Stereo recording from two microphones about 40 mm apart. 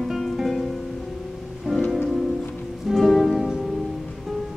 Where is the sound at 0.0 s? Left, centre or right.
Centre.